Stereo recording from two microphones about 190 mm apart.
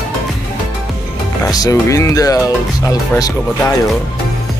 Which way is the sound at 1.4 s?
20° left (ahead or behind).